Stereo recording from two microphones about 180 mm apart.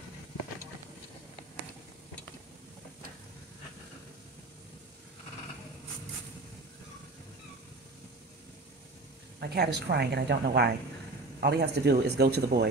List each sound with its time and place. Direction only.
9.4 s a woman's voice: 65° right (ahead or behind)